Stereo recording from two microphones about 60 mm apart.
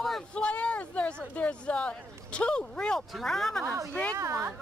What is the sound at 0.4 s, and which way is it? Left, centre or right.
Speech, left.